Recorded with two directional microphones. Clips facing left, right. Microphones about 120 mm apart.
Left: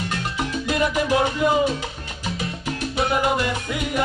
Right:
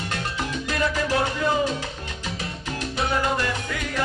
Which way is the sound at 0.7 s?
20° left (ahead or behind).